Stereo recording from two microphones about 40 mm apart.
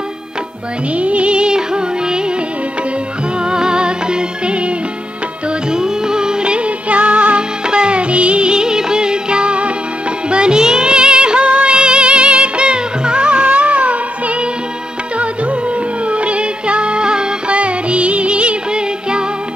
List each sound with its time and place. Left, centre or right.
0.9 s music: right
3.4 s music: right
16.1 s music: right